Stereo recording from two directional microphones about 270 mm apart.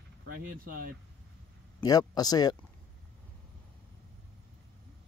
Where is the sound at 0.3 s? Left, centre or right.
Right.